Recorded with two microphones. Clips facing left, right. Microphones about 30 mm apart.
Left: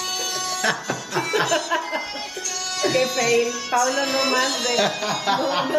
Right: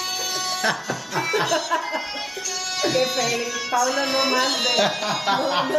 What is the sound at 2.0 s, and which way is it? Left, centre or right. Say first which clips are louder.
Speech: even; centre.